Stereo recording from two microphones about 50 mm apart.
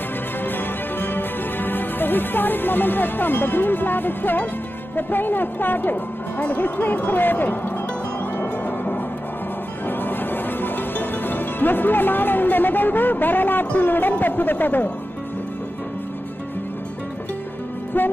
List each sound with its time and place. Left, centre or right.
0.4 s music: left
4.9 s speech: left
9.8 s music: left
14.1 s speech: left